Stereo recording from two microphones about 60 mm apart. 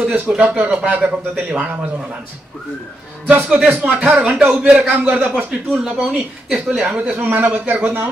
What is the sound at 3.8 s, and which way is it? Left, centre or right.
Speech, right.